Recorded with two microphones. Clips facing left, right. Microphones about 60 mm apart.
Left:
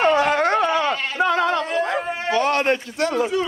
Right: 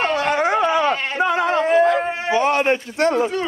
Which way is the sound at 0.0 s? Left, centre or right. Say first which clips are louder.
Left 3 dB; left.